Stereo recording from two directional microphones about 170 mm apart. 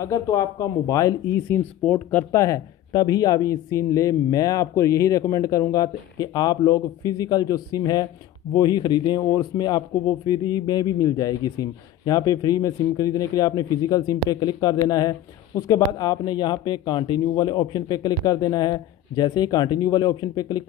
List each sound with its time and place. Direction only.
0.0 s speech: 20° left (ahead or behind)